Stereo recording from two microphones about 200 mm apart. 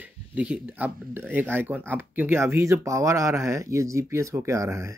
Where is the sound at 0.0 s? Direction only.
5° right (ahead or behind).